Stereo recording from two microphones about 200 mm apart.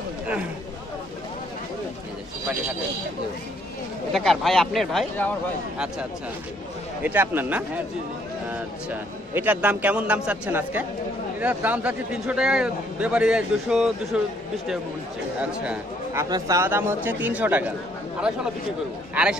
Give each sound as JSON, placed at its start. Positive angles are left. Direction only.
{"t": 4.1, "sound": "speech", "side_deg": 0}
{"t": 7.0, "sound": "speech", "side_deg": -10}
{"t": 9.3, "sound": "speech", "side_deg": -10}
{"t": 15.6, "sound": "speech", "side_deg": -10}